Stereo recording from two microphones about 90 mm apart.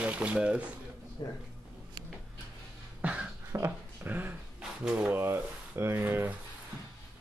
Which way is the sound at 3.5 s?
35° right (ahead or behind).